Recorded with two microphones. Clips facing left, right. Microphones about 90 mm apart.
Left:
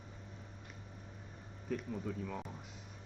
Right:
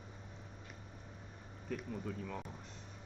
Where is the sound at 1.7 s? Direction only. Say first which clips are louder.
Left 2 dB; centre (ahead or behind).